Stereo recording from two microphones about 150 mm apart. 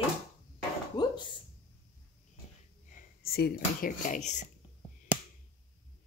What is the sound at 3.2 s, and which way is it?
Speech, 90° left.